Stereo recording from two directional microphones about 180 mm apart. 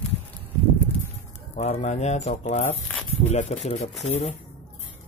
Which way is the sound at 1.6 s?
40° left (ahead or behind).